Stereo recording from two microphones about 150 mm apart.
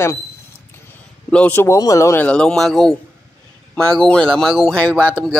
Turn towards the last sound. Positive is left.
turn(degrees=10)  # may be behind; listen again after turning